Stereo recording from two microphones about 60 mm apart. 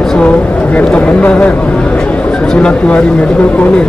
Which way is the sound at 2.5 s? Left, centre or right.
Centre.